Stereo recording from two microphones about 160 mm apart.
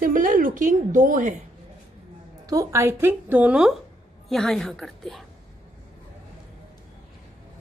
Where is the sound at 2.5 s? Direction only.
20° right (ahead or behind); by 5.2 s centre (ahead or behind).